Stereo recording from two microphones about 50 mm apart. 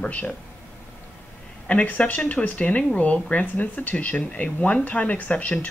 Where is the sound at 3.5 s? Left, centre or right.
Left.